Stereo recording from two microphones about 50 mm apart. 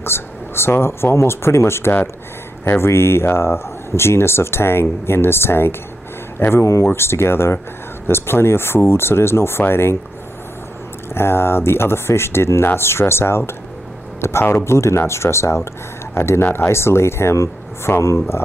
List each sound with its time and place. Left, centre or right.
0.0 s speech: left
11.1 s speech: left
16.2 s speech: left